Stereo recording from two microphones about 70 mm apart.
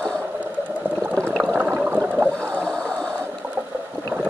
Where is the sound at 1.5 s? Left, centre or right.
Right.